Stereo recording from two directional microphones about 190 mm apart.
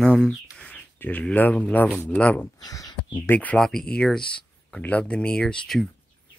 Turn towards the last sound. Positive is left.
turn(degrees=5)  # may be behind; listen again after turning